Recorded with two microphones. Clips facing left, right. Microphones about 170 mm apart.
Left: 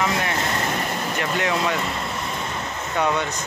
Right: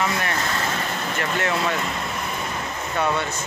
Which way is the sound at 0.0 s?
15° left (ahead or behind).